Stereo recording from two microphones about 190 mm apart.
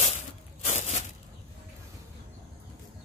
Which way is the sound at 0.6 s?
35° left (ahead or behind).